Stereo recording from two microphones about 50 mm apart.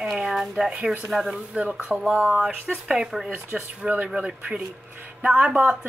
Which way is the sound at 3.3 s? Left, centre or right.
Right.